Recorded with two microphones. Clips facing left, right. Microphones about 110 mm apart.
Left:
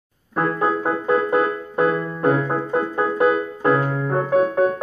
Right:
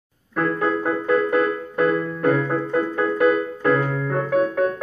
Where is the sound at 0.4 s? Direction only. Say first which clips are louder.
Left 1 dB; 20° left (ahead or behind).